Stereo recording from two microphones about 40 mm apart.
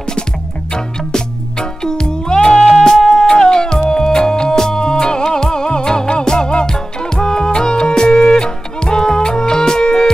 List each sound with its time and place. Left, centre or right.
0.7 s music: centre
2.6 s music: centre